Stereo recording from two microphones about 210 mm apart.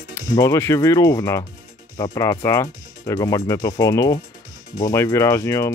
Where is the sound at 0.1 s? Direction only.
15° left (ahead or behind).